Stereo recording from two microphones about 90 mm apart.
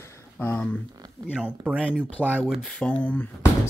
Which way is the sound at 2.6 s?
10° left (ahead or behind).